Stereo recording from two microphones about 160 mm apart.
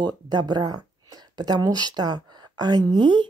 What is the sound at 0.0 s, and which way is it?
Speech, 25° right (ahead or behind).